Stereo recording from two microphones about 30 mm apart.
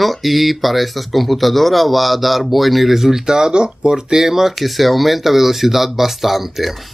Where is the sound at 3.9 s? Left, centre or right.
Centre.